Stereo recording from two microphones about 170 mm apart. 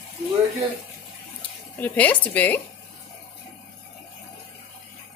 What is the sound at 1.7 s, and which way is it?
Speech, 10° left (ahead or behind).